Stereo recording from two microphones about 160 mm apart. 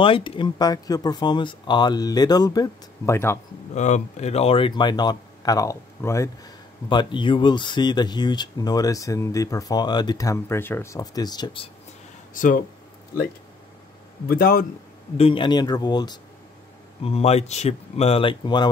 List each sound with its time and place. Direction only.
0.0 s speech: 30° left (ahead or behind); by 3.3 s 15° left (ahead or behind)
3.7 s speech: 45° left (ahead or behind); by 11.7 s 30° left (ahead or behind)
12.4 s speech: 55° left (ahead or behind)
14.2 s a man's voice: 70° left (ahead or behind)
15.1 s speech: 35° left (ahead or behind)
17.0 s speech: 40° left (ahead or behind)